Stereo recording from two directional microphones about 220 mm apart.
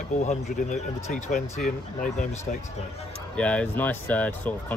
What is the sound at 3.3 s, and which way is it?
Speech, 5° left (ahead or behind).